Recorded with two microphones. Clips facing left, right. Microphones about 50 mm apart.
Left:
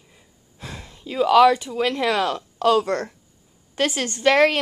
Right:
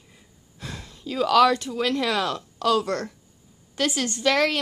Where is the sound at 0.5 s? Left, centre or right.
Centre.